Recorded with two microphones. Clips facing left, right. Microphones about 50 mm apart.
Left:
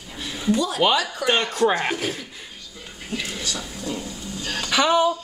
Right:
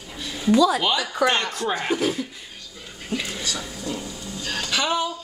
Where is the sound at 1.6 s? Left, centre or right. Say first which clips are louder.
Left 4 dB; left.